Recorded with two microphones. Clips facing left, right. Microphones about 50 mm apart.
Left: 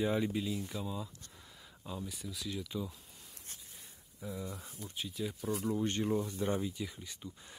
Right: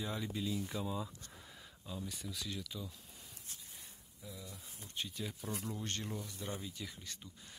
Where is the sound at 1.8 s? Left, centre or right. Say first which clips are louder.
Left 3 dB; centre.